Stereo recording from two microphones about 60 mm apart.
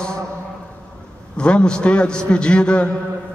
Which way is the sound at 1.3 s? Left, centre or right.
Centre.